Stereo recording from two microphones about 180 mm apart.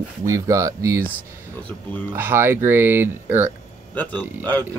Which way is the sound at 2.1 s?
10° right (ahead or behind).